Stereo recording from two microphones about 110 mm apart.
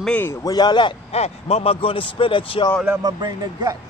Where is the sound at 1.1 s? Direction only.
70° left (ahead or behind); by 2.6 s 50° left (ahead or behind).